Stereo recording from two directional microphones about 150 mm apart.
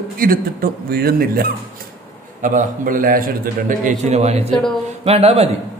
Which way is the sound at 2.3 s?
60° right (ahead or behind).